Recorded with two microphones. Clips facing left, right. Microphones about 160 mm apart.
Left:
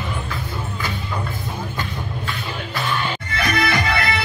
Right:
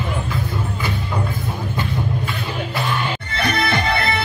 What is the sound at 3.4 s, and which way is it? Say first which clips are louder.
Music: right 1 dB; 30° right (ahead or behind).